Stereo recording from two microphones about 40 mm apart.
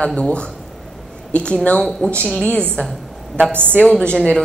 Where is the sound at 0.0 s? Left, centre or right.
Left.